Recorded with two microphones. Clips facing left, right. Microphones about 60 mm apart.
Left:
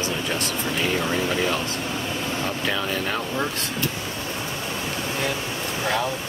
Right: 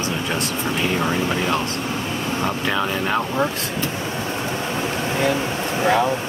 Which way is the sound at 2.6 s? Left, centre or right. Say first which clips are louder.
Right 3 dB; centre.